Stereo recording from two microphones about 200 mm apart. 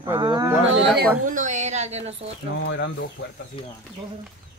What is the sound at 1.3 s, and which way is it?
Speech, 40° right (ahead or behind).